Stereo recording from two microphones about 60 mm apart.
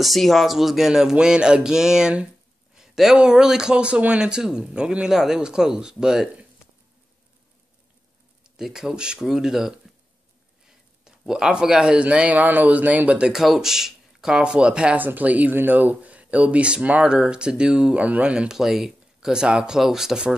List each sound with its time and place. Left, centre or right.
0.0 s a man's voice: centre
8.5 s a man's voice: centre
11.1 s speech: centre
13.2 s a man's voice: centre
15.0 s speech: right
18.5 s a man's voice: centre